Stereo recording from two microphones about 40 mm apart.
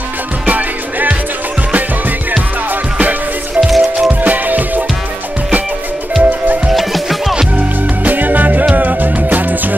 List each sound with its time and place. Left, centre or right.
0.5 s music: right
3.6 s music: centre
4.2 s music: right
6.2 s music: right
6.7 s music: centre
7.5 s music: right